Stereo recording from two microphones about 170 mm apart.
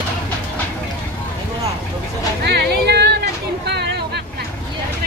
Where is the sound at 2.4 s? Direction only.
75° right (ahead or behind).